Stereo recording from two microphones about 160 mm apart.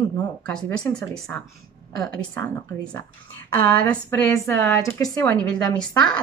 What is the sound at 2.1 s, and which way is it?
A woman's voice, 5° left (ahead or behind).